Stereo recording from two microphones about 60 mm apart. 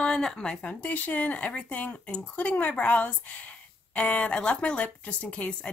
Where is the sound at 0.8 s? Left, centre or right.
Left.